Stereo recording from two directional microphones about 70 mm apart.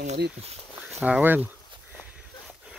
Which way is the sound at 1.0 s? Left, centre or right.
Right.